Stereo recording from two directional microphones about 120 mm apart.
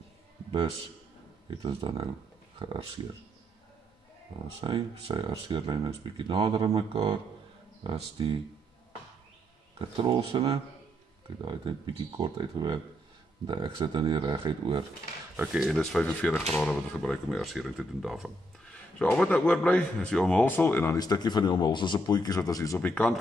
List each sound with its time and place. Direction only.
1.5 s speech: 45° right (ahead or behind)
4.6 s speech: 40° right (ahead or behind)
9.8 s speech: 45° right (ahead or behind)
15.3 s speech: 5° right (ahead or behind)
18.9 s speech: 10° left (ahead or behind)
20.9 s speech: 35° left (ahead or behind)
22.8 s speech: 15° left (ahead or behind)